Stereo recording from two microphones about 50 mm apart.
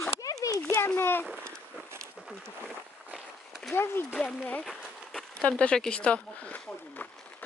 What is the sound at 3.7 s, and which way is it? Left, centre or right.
Speech, left.